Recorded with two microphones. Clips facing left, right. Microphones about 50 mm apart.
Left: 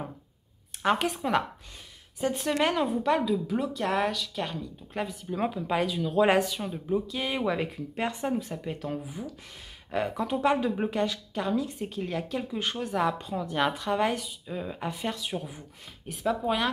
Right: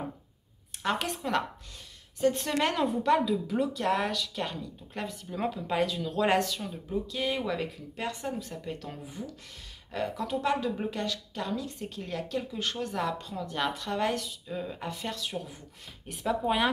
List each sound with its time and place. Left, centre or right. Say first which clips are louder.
0.8 s speech: left 4 dB; centre
7.5 s speech: left 3 dB; left; by 9.3 s centre
9.8 s speech: left 3 dB; left
16.1 s speech: left 1 dB; centre